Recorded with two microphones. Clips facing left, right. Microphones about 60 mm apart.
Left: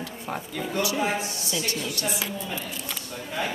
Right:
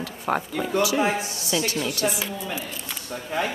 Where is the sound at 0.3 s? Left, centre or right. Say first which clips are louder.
Right 9 dB; right.